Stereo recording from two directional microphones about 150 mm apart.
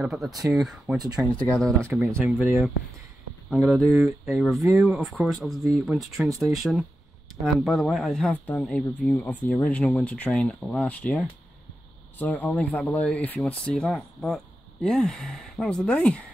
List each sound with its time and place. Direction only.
0.0 s speech: centre (ahead or behind)
0.3 s speech: 25° right (ahead or behind)
0.6 s speech: centre (ahead or behind)
0.9 s speech: 25° right (ahead or behind)
1.5 s speech: 5° left (ahead or behind)
1.8 s speech: 15° right (ahead or behind)
2.2 s speech: centre (ahead or behind)